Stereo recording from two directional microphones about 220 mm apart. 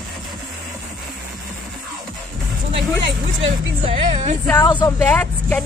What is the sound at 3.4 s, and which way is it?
Speech, 30° right (ahead or behind).